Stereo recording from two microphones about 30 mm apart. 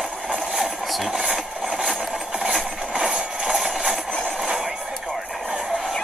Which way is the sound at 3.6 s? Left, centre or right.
Centre.